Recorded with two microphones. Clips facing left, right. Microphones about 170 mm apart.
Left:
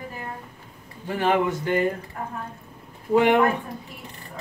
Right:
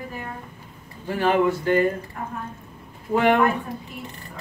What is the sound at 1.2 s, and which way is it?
Speech, 20° left (ahead or behind).